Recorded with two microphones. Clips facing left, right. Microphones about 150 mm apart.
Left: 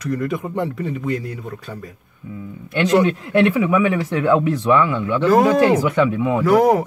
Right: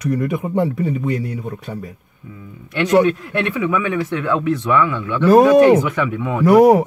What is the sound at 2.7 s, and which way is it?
Speech, 25° left (ahead or behind).